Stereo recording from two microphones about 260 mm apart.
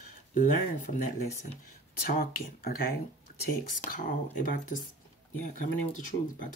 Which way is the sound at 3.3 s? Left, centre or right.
Left.